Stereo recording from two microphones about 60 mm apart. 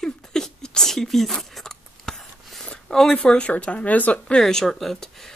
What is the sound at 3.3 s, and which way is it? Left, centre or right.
Speech, centre.